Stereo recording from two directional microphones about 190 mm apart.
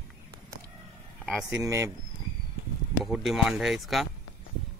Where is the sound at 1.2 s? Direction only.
5° right (ahead or behind).